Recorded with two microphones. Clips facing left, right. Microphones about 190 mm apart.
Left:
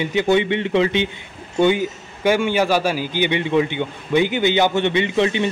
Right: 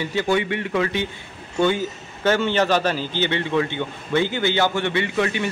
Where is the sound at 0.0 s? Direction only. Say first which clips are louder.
Left 4 dB; 20° left (ahead or behind).